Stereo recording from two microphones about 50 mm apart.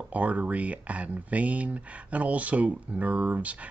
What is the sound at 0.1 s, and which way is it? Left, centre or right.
Speech, right.